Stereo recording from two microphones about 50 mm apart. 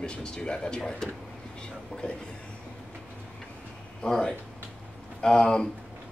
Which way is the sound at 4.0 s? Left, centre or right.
Centre.